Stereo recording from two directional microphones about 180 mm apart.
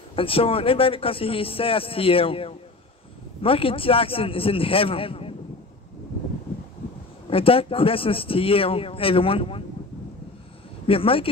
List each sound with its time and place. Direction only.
0.1 s speech: 30° left (ahead or behind)
7.2 s speech: 30° left (ahead or behind)
10.9 s speech: 30° left (ahead or behind)